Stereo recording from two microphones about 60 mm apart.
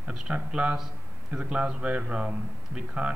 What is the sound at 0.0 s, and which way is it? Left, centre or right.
A man's voice, centre.